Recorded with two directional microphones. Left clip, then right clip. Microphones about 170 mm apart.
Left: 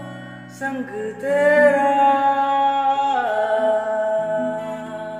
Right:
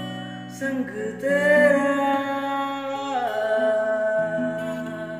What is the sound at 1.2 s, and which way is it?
Mantra, 15° left (ahead or behind).